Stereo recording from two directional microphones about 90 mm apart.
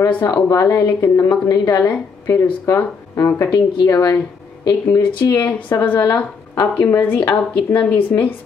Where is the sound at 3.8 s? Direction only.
35° left (ahead or behind).